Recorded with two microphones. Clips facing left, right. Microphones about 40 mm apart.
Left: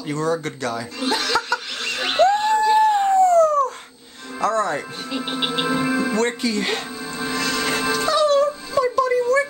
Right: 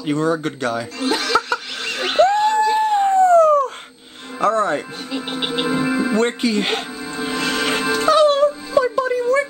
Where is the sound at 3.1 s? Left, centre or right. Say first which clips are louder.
Right 3 dB; right.